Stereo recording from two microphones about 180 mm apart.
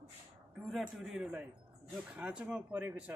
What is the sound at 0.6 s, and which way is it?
A man's voice, centre (ahead or behind).